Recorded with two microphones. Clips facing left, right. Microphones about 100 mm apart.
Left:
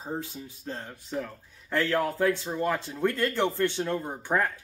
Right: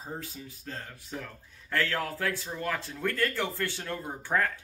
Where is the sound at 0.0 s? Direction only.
25° left (ahead or behind).